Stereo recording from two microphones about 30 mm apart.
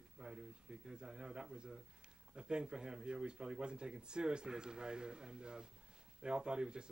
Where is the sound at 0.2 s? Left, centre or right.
Right.